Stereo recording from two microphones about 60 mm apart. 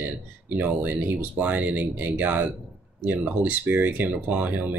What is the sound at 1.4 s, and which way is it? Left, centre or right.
Speech, right.